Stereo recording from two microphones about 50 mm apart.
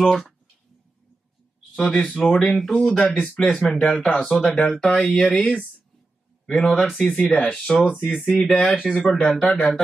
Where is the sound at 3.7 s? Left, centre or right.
Centre.